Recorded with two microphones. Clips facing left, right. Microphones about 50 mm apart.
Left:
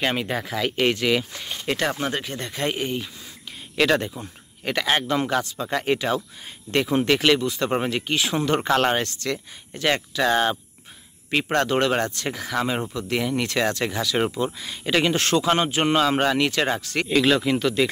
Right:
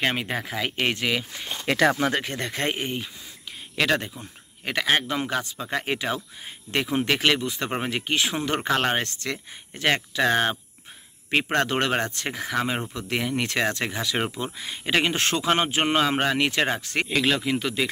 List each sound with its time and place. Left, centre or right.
0.0 s speech: right
0.7 s speech: centre
1.7 s speech: right
2.7 s speech: right
3.7 s speech: centre; by 17.1 s right
17.1 s speech: centre